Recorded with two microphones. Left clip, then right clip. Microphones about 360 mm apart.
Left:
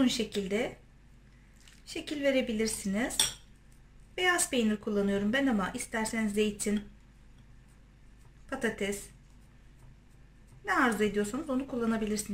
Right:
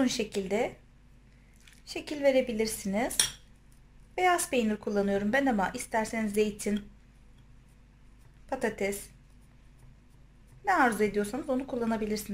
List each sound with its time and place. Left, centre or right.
0.0 s a woman's voice: centre
2.0 s a woman's voice: centre
4.2 s a woman's voice: centre
8.5 s a woman's voice: centre
10.6 s a woman's voice: centre